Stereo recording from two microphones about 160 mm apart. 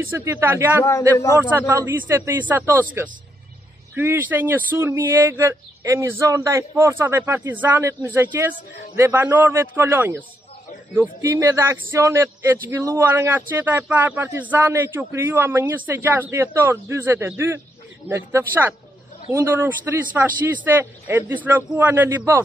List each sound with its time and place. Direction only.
0.1 s speech: 15° right (ahead or behind)
0.8 s a man's voice: 15° left (ahead or behind)
1.4 s speech: 15° right (ahead or behind)